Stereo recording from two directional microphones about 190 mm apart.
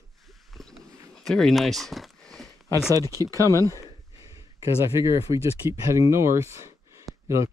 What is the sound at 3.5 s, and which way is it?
Speech, 15° left (ahead or behind).